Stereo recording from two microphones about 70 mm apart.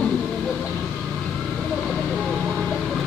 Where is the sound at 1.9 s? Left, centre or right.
Centre.